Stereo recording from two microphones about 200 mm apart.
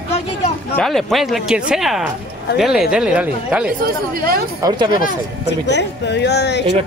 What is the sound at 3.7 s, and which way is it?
Speech, 45° right (ahead or behind).